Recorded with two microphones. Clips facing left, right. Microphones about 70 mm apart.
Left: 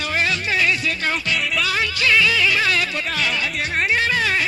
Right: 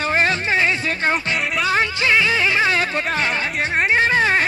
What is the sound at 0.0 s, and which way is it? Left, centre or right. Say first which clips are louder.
Music: right 3 dB; right.